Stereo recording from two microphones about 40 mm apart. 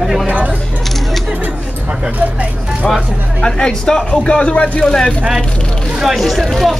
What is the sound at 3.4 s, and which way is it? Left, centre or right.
Speech, centre.